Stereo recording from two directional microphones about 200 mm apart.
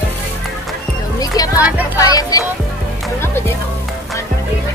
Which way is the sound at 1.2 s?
20° left (ahead or behind).